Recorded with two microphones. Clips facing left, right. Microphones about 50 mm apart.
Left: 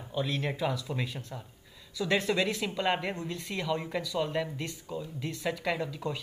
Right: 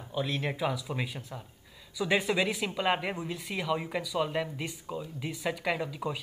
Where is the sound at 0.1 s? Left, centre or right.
Centre.